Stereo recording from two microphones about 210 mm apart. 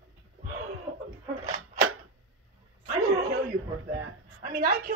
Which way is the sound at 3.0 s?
90° right.